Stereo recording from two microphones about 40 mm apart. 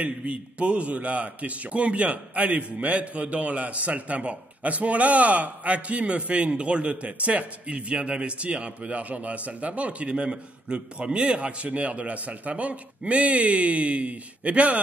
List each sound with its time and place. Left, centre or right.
0.0 s a man's voice: right